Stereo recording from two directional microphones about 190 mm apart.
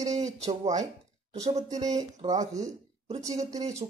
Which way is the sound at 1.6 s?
20° right (ahead or behind).